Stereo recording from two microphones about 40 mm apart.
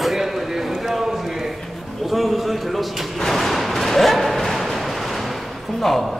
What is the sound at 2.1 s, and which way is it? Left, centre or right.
Speech, centre.